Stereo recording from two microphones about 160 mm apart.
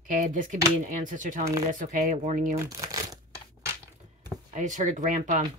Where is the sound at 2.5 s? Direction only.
20° right (ahead or behind).